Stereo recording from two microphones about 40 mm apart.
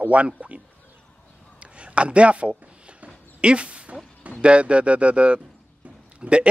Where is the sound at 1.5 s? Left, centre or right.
Right.